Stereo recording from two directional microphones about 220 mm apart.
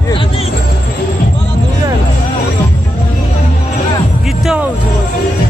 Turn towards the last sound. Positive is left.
turn(degrees=0)  # may be behind; listen again after turning